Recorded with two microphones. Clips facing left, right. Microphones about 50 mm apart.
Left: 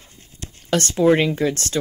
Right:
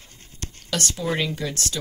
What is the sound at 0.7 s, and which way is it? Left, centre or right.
Speech, left.